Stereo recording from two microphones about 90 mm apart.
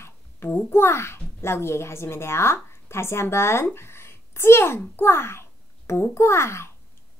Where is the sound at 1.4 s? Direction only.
30° left (ahead or behind).